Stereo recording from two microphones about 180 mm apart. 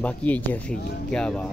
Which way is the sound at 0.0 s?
5° left (ahead or behind).